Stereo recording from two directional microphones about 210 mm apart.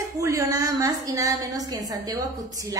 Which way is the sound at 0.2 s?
15° right (ahead or behind).